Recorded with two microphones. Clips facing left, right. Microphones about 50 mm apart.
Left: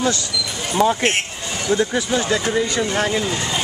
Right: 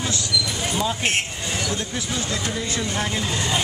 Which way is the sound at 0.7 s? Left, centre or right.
Left.